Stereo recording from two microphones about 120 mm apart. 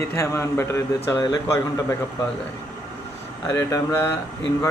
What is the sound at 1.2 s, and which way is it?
Speech, 35° left (ahead or behind).